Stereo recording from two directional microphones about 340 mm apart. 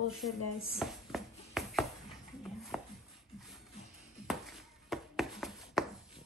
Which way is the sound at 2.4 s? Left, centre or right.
Centre.